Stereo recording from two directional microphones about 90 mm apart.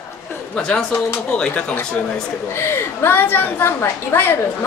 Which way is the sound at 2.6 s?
25° left (ahead or behind).